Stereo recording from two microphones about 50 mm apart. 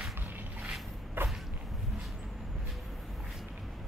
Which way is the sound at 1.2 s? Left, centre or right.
Right.